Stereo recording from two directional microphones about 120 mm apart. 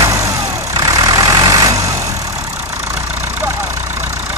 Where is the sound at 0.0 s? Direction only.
25° right (ahead or behind).